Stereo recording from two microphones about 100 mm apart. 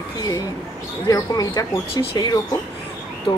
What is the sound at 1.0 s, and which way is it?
Speech, 35° left (ahead or behind).